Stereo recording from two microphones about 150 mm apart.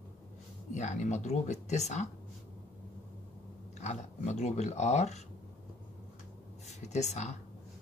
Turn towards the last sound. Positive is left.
turn(degrees=50)  # may be behind; listen again after turning